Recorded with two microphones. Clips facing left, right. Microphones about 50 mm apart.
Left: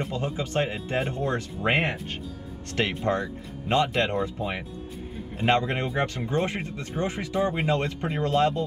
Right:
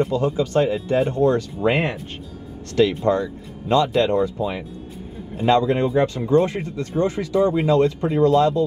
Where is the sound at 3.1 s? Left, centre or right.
Left.